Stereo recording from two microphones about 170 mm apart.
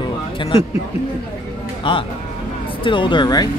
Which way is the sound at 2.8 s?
30° left (ahead or behind).